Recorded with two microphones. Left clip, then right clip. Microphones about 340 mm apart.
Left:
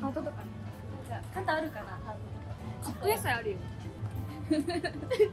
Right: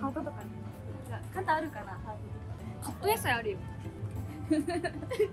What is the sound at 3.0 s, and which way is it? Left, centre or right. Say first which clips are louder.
Speech: right 1 dB; right.